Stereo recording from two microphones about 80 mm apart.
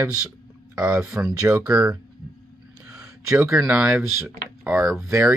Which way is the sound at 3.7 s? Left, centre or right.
Centre.